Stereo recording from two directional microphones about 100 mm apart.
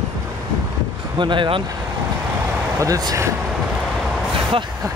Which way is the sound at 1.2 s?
55° right (ahead or behind).